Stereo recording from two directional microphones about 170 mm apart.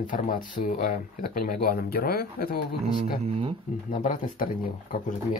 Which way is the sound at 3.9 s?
50° left (ahead or behind).